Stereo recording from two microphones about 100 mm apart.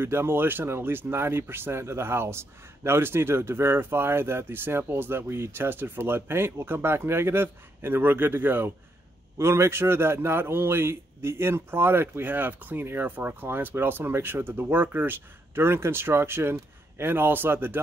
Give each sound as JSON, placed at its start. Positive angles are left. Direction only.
{"t": 0.0, "sound": "speech", "side_deg": -25}